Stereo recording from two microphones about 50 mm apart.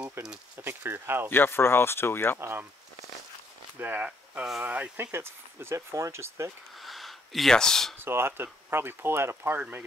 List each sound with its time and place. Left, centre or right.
0.6 s speech: right
1.3 s speech: left
3.8 s speech: right
5.1 s speech: right
6.8 s a sound: centre
7.5 s speech: centre
8.0 s speech: right